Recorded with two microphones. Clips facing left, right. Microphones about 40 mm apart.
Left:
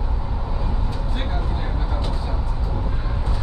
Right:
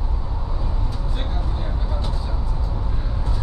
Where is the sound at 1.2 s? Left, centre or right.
Left.